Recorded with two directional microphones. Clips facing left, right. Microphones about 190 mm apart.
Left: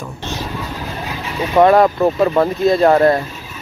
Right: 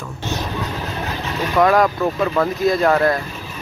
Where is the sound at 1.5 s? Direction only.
30° left (ahead or behind).